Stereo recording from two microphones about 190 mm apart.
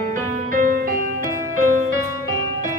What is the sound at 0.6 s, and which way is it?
Music, 50° right (ahead or behind).